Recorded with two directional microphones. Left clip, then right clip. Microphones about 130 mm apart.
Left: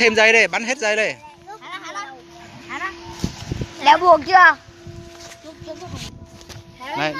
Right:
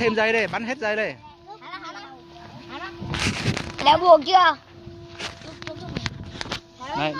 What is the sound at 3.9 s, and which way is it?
Speech, 60° right (ahead or behind).